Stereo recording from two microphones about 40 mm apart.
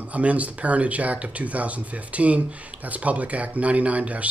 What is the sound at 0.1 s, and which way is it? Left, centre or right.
Speech, right.